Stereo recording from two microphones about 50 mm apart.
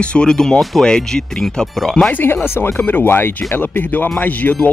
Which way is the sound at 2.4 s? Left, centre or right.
Left.